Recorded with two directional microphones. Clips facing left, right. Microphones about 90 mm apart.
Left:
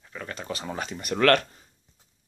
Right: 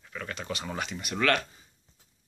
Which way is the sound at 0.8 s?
45° left (ahead or behind).